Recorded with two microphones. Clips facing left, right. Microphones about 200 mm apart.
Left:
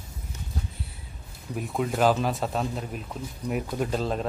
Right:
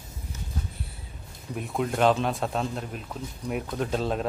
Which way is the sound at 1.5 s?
Centre (ahead or behind).